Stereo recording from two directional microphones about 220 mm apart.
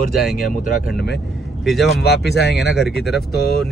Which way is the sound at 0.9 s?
50° left (ahead or behind).